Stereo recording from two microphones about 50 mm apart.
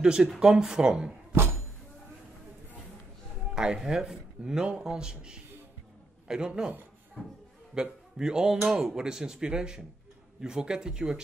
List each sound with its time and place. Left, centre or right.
0.0 s speech: centre
1.3 s a sound: right
3.5 s a man's voice: centre
7.2 s a man's voice: left
7.7 s a man's voice: centre